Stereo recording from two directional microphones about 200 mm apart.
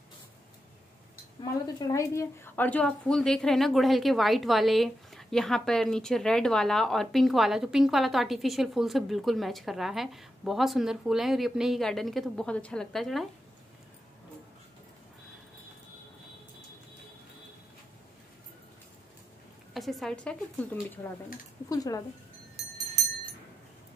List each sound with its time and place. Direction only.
1.4 s a woman's voice: 20° left (ahead or behind); by 13.3 s centre (ahead or behind)
19.7 s a woman's voice: centre (ahead or behind)
21.6 s speech: 15° left (ahead or behind)
22.6 s clock: centre (ahead or behind)